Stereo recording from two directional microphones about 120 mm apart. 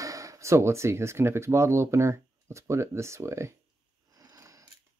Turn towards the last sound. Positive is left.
turn(degrees=-25)  # may be behind; listen again after turning